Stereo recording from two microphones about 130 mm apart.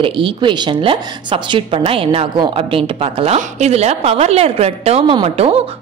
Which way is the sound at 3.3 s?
60° right (ahead or behind).